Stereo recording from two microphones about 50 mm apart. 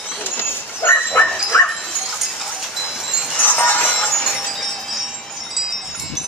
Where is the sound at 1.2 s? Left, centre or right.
Left.